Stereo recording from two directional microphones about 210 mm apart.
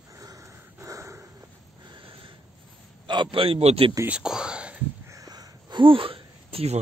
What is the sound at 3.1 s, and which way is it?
Speech, 25° right (ahead or behind).